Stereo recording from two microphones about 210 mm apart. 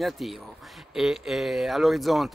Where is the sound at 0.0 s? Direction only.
Centre (ahead or behind).